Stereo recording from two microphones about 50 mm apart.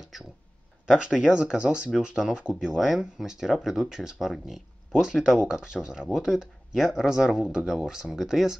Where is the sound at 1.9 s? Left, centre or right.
Centre.